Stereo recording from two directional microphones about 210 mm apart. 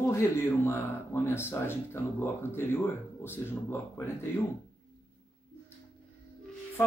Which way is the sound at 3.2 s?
10° left (ahead or behind).